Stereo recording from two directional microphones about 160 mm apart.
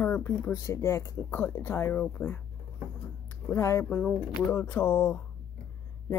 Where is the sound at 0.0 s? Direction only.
10° left (ahead or behind).